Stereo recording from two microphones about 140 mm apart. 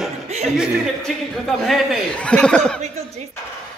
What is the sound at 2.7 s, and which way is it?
Speech, 50° right (ahead or behind).